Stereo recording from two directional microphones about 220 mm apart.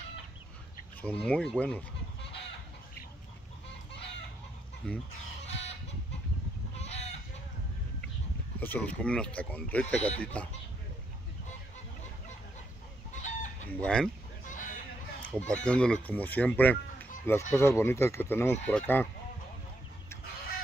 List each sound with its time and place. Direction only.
1.0 s speech: 5° left (ahead or behind)
4.8 s speech: 5° left (ahead or behind)
5.5 s chicken: 30° left (ahead or behind)
8.5 s speech: 5° left (ahead or behind)
13.1 s chicken: 35° left (ahead or behind)
13.7 s speech: 5° left (ahead or behind)
14.4 s chicken: 35° left (ahead or behind)
15.3 s speech: 5° left (ahead or behind)